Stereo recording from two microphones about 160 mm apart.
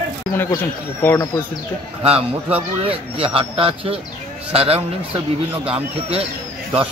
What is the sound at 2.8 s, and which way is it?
Speech, 35° right (ahead or behind).